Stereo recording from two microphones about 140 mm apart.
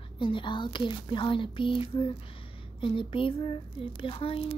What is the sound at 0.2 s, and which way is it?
Speech, 35° left (ahead or behind).